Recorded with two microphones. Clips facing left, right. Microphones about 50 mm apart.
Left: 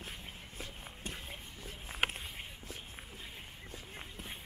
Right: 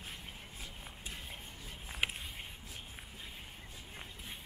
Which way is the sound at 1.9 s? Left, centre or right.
Left.